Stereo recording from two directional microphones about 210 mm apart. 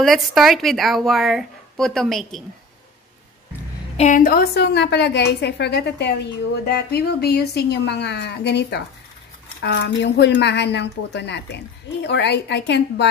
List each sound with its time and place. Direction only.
0.0 s a woman's voice: centre (ahead or behind)
3.9 s a woman's voice: 35° left (ahead or behind); by 13.1 s 55° left (ahead or behind)